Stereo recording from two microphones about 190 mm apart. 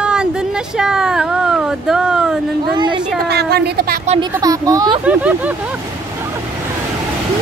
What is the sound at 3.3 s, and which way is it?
Speech, 60° right (ahead or behind).